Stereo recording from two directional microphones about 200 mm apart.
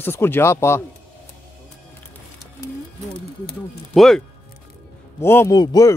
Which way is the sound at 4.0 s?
Centre (ahead or behind).